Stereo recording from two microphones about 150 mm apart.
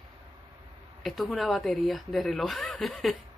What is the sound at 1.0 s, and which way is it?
Speech, centre (ahead or behind).